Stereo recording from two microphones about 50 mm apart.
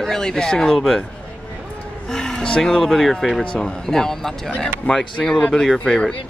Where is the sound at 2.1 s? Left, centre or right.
Centre.